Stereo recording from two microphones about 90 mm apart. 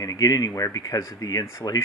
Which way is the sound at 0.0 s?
45° left (ahead or behind).